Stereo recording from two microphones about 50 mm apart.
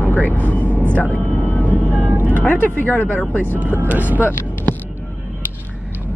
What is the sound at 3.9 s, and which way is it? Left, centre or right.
Speech, right.